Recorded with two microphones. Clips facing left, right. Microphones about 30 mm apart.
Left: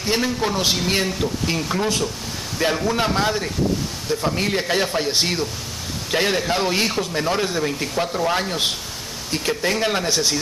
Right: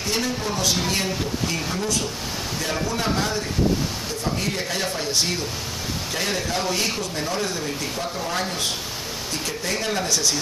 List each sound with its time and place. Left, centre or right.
0.1 s speech: left